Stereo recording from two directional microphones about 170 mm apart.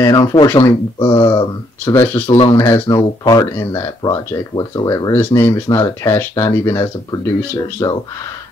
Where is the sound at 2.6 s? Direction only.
20° left (ahead or behind).